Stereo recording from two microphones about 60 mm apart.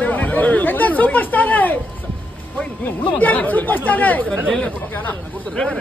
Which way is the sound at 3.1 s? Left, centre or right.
Left.